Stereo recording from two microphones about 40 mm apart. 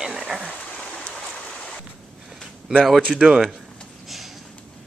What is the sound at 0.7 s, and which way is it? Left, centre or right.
Rain, left.